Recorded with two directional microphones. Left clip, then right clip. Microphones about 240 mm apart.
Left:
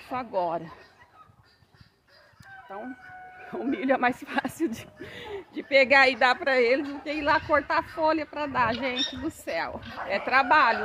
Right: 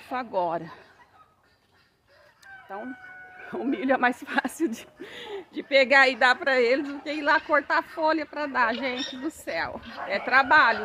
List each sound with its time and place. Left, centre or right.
0.0 s speech: centre
3.4 s speech: centre